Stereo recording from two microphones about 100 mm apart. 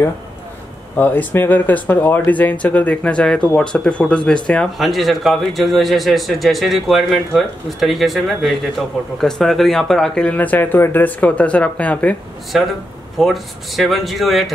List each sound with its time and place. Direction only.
0.9 s a man's voice: 20° left (ahead or behind)
12.5 s a man's voice: 5° right (ahead or behind)